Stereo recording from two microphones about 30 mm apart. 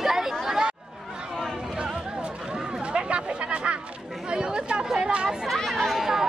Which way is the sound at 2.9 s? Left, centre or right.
Right.